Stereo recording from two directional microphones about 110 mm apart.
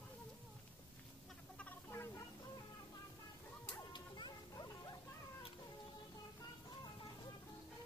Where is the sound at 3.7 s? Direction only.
45° left (ahead or behind).